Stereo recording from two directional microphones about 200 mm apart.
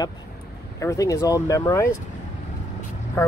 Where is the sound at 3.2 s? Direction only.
10° left (ahead or behind).